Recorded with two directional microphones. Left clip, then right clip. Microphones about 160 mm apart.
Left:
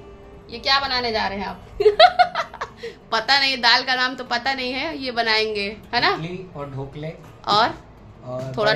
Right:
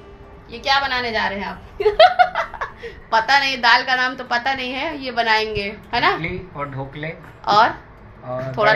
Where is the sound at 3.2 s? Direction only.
50° left (ahead or behind).